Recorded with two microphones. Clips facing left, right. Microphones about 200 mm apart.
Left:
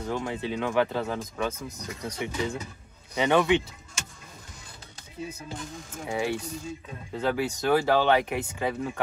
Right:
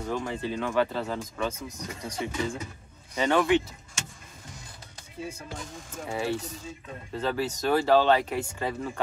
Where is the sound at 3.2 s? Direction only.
20° left (ahead or behind).